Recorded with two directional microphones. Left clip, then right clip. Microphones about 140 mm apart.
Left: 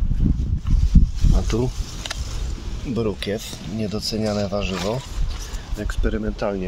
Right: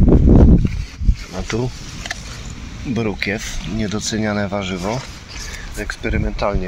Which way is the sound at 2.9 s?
15° left (ahead or behind).